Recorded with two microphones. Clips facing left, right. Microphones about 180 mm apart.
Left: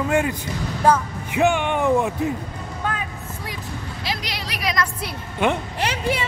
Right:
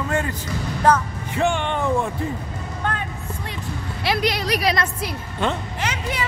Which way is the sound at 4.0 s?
60° right (ahead or behind).